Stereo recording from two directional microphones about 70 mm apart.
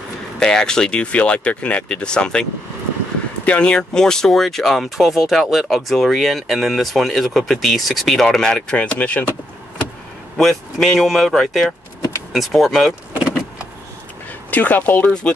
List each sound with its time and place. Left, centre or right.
0.4 s speech: centre
3.4 s speech: centre
10.3 s speech: centre
14.5 s speech: left